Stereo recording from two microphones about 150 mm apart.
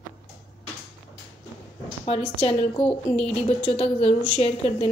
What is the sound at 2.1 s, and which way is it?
A woman's voice, 40° left (ahead or behind).